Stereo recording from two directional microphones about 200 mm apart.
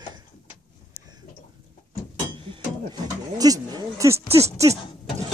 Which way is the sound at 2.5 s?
20° right (ahead or behind).